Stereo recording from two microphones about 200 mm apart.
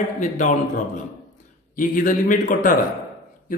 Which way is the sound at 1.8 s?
40° left (ahead or behind).